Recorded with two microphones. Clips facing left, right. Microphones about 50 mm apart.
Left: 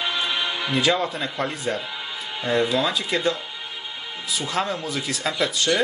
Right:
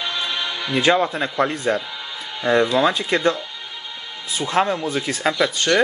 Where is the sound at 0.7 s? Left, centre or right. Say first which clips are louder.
Right 5 dB; right.